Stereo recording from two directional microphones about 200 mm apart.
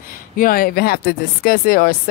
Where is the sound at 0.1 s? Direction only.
45° left (ahead or behind).